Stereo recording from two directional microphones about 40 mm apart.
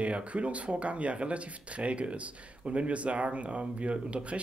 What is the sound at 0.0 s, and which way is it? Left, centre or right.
Speech, right.